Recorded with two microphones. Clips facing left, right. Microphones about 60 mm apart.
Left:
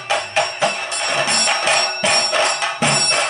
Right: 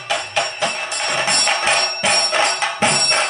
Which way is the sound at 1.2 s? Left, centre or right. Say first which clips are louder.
Even; centre.